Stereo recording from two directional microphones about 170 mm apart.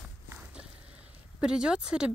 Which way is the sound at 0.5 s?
5° right (ahead or behind).